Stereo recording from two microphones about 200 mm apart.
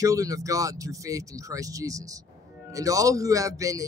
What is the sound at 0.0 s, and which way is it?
A man's voice, 15° right (ahead or behind).